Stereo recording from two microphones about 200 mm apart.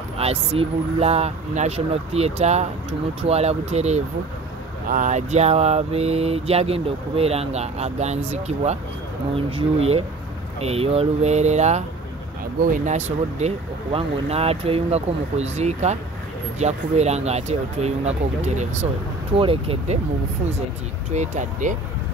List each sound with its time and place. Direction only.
0.2 s speech: 30° right (ahead or behind)
21.1 s speech: 35° right (ahead or behind)